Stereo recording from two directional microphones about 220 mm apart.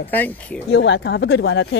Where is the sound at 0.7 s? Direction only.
55° left (ahead or behind).